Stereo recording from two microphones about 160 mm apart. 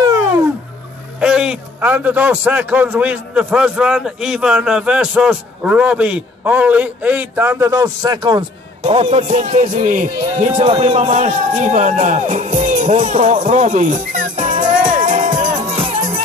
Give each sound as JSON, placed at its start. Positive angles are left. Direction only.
{"t": 0.0, "sound": "a sound", "side_deg": -20}
{"t": 1.2, "sound": "a man's voice", "side_deg": -5}
{"t": 10.6, "sound": "speech", "side_deg": -35}